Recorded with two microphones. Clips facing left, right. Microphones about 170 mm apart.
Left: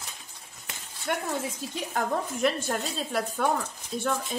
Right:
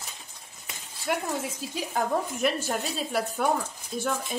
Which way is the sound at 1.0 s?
5° right (ahead or behind).